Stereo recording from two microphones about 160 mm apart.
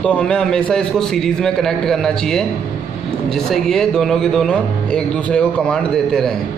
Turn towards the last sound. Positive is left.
turn(degrees=5)  # may be behind; listen again after turning